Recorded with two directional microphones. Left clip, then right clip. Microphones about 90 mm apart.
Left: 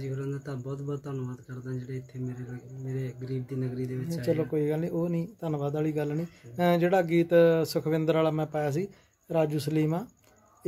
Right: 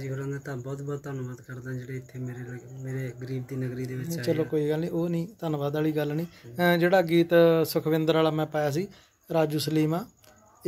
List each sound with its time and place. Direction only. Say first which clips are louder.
0.0 s speech: right 1 dB; 30° left (ahead or behind)